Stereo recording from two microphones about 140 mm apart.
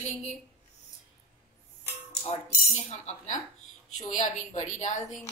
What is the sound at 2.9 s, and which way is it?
A woman's voice, 55° left (ahead or behind).